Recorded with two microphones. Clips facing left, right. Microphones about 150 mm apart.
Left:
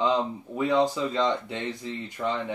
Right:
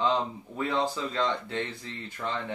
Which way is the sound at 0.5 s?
15° left (ahead or behind).